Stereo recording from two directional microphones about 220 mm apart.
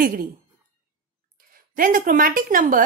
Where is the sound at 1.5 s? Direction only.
40° right (ahead or behind).